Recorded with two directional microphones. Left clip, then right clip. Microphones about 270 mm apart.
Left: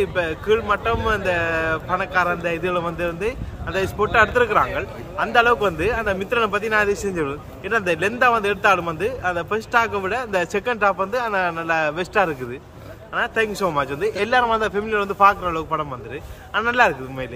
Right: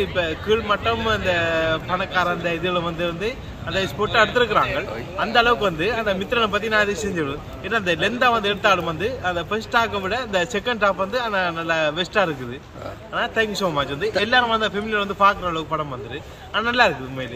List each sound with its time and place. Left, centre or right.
0.0 s a man's voice: centre